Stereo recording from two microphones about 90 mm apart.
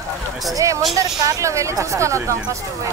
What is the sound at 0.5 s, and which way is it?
Speech, 35° right (ahead or behind).